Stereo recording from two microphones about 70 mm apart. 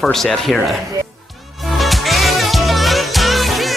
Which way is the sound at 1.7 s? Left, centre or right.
Centre.